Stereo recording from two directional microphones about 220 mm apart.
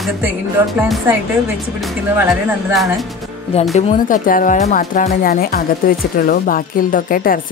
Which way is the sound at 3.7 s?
40° left (ahead or behind).